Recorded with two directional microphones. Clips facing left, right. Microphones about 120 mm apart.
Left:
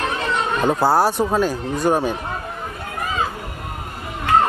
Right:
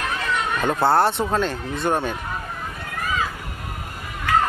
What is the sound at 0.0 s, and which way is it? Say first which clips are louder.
Chatter: left 3 dB; 30° left (ahead or behind).